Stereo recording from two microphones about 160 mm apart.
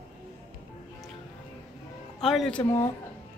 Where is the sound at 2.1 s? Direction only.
Centre (ahead or behind).